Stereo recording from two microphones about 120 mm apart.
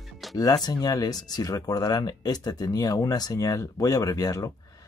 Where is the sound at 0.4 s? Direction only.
35° left (ahead or behind).